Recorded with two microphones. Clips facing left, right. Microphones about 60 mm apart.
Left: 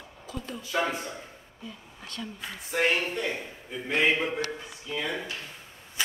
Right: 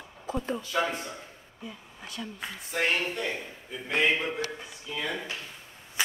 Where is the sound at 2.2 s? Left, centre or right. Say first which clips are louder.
Even; centre.